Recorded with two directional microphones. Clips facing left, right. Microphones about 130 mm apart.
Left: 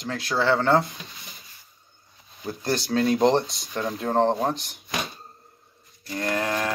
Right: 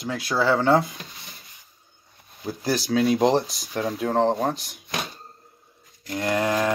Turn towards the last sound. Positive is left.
turn(degrees=-15)  # may be behind; listen again after turning